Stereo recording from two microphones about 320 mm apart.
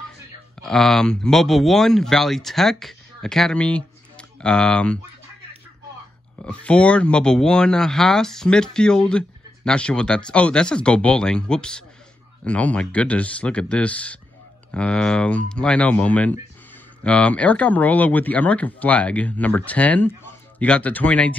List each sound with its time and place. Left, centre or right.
0.6 s speech: centre
6.4 s speech: centre